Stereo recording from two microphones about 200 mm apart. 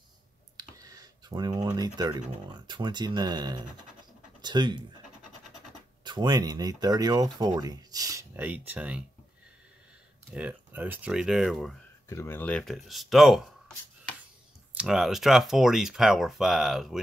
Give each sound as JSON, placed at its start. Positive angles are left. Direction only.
{"t": 0.6, "sound": "speech", "side_deg": -20}
{"t": 6.0, "sound": "speech", "side_deg": -20}
{"t": 10.3, "sound": "speech", "side_deg": -10}
{"t": 12.1, "sound": "speech", "side_deg": 10}